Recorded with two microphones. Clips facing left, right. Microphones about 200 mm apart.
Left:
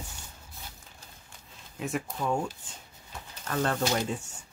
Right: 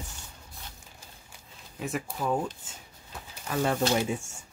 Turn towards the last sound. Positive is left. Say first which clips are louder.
# right 2 dB
turn(degrees=-10)  # may be behind; listen again after turning